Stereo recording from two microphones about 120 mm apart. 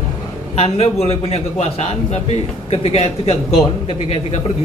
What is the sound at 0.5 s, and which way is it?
A man's voice, 60° left (ahead or behind).